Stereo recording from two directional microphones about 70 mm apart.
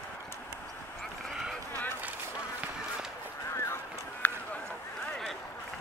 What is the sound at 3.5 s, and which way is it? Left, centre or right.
Run, left.